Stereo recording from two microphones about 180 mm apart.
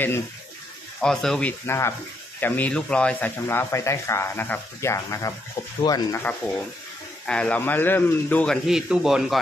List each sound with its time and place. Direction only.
1.0 s speech: centre (ahead or behind)
1.7 s speech: 15° left (ahead or behind)
7.2 s speech: 5° left (ahead or behind)
8.6 s speech: 5° right (ahead or behind)